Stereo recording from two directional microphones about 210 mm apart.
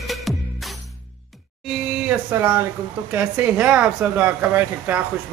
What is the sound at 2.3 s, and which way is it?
Speech, 10° right (ahead or behind).